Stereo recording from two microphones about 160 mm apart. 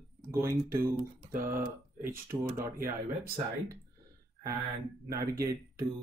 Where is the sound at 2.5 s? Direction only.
65° right (ahead or behind).